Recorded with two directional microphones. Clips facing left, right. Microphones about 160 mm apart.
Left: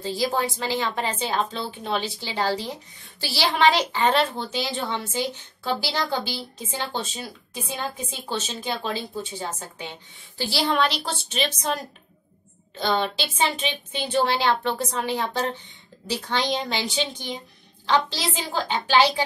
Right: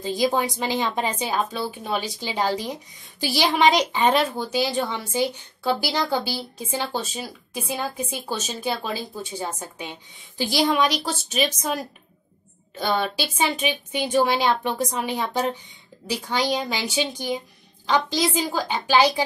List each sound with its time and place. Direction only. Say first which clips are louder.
0.0 s a woman's voice: right 2 dB; 15° right (ahead or behind)